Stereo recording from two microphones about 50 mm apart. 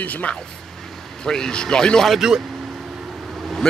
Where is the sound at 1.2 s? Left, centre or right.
Centre.